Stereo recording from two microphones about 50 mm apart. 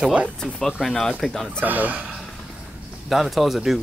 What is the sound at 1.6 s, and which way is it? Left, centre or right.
Speech, right.